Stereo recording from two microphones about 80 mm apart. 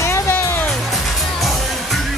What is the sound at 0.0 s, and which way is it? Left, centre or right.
Music, left.